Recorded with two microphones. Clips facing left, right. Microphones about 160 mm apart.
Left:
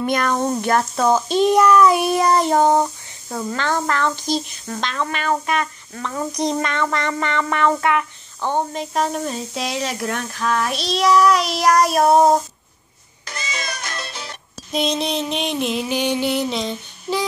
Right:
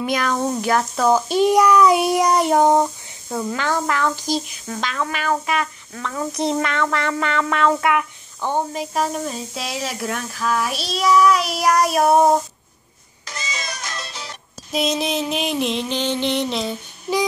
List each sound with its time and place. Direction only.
0.0 s a child's voice: 5° right (ahead or behind)
2.7 s music: 5° right (ahead or behind)
5.5 s speech: 5° right (ahead or behind)
6.3 s music: 5° right (ahead or behind)
13.3 s cat: 60° left (ahead or behind)
14.7 s music: centre (ahead or behind)